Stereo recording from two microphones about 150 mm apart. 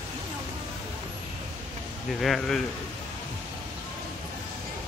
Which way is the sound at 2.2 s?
Centre (ahead or behind).